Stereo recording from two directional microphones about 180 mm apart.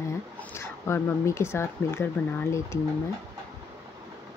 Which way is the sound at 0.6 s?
15° left (ahead or behind).